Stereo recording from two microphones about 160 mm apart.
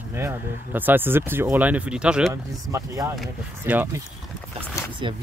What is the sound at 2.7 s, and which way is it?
Speech, 20° right (ahead or behind).